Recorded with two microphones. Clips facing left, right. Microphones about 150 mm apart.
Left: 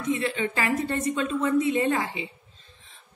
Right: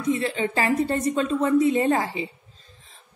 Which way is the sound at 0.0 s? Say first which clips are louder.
Right 3 dB; 35° right (ahead or behind).